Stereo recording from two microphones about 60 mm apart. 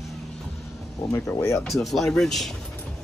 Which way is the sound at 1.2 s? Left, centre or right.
Left.